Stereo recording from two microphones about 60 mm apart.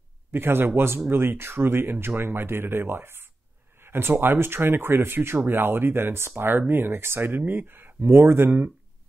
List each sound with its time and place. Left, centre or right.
0.3 s speech: right